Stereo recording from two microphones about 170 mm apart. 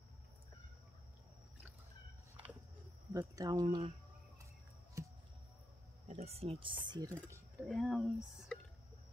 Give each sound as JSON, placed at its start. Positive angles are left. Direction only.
{"t": 3.1, "sound": "speech", "side_deg": -20}
{"t": 6.0, "sound": "speech", "side_deg": -40}
{"t": 7.6, "sound": "speech", "side_deg": 0}